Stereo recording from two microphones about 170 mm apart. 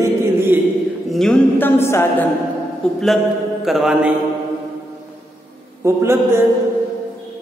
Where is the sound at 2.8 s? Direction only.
5° left (ahead or behind).